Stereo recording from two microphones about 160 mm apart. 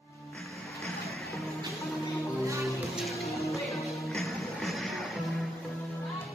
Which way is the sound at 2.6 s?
Centre (ahead or behind).